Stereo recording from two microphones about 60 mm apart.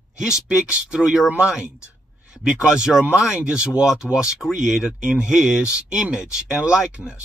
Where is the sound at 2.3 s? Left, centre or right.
Centre.